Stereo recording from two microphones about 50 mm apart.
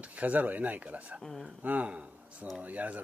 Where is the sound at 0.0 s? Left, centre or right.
Right.